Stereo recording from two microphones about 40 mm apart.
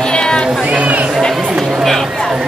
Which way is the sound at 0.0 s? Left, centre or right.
Left.